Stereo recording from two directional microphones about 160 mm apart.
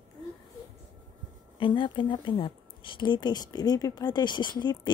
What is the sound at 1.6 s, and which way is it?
Speech, 30° left (ahead or behind).